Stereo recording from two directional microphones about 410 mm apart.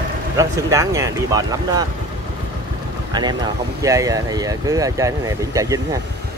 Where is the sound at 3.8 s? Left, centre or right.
Centre.